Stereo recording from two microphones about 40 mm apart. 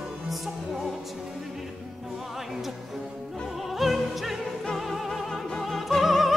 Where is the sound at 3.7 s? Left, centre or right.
Centre.